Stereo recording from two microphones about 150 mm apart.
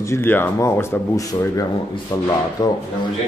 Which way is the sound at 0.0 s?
15° left (ahead or behind).